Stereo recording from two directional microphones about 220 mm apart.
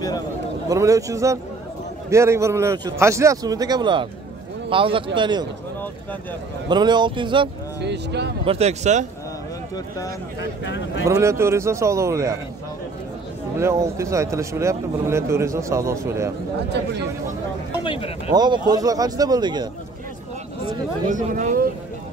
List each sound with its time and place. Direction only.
0.7 s a man's voice: 15° right (ahead or behind)
6.7 s a man's voice: 20° right (ahead or behind)
7.8 s speech: 50° right (ahead or behind)
8.5 s a man's voice: 30° right (ahead or behind)
10.6 s speech: 55° left (ahead or behind)
11.1 s speech: 15° right (ahead or behind)
13.6 s speech: 10° right (ahead or behind)
17.8 s speech: 25° left (ahead or behind)
18.3 s a man's voice: 20° right (ahead or behind)
21.1 s speech: 35° right (ahead or behind)